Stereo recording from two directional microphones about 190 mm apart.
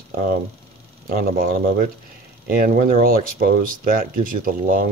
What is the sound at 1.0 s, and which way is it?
Speech, 50° right (ahead or behind).